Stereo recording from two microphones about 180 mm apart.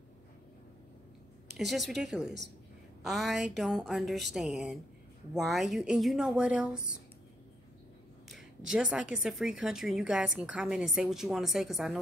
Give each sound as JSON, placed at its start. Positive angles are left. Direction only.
{"t": 1.6, "sound": "speech", "side_deg": 0}
{"t": 8.3, "sound": "speech", "side_deg": 0}